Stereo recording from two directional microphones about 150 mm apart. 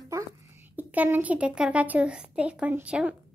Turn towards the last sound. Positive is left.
turn(degrees=-10)  # may be behind; listen again after turning